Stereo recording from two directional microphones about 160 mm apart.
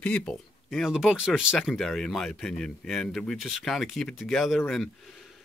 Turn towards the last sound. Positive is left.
turn(degrees=0)  # may be behind; listen again after turning